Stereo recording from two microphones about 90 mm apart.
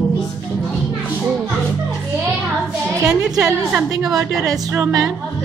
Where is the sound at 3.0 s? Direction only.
10° right (ahead or behind).